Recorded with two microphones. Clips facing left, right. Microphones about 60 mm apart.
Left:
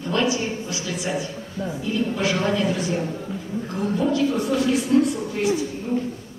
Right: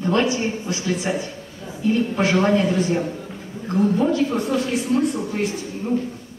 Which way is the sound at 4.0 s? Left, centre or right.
Right.